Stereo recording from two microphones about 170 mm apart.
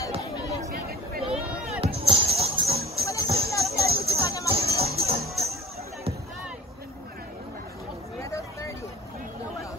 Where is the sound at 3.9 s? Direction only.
35° right (ahead or behind).